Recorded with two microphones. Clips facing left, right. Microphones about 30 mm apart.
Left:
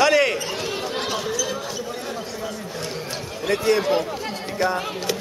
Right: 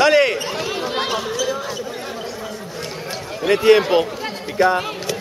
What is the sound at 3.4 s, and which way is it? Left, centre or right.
Speech, right.